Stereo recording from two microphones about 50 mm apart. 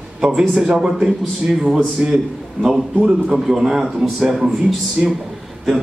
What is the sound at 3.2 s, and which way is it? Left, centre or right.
Speech, centre.